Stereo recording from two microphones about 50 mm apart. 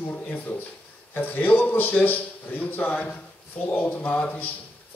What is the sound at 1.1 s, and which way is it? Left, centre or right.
Speech, left.